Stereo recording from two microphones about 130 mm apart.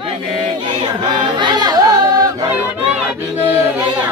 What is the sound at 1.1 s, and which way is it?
Yodeling, 40° right (ahead or behind).